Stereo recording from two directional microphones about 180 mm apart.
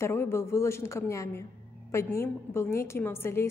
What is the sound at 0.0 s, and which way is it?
A woman's voice, 15° left (ahead or behind).